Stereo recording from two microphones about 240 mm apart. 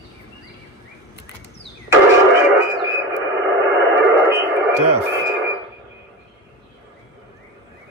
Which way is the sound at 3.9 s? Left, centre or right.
Centre.